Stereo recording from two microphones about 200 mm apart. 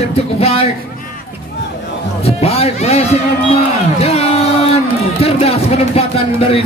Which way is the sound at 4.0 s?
30° left (ahead or behind).